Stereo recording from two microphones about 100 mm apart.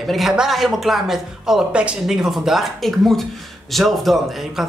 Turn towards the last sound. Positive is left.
turn(degrees=0)  # may be behind; listen again after turning